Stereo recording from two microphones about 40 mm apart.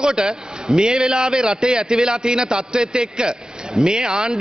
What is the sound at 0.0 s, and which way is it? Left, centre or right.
A man's voice, centre.